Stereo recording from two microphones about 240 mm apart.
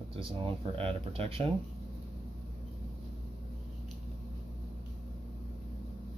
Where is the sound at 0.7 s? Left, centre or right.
Right.